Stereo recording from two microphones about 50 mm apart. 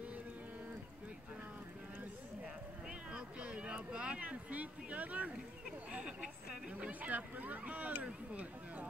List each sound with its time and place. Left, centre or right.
2.9 s a sound: centre
5.9 s speech: right
6.7 s speech: right